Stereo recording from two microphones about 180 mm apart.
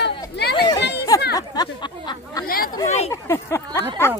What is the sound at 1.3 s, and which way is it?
Chatter, 20° left (ahead or behind).